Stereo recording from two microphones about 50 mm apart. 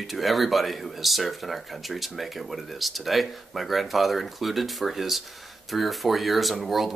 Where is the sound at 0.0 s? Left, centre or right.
Centre.